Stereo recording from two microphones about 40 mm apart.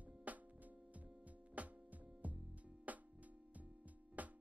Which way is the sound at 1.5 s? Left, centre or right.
Right.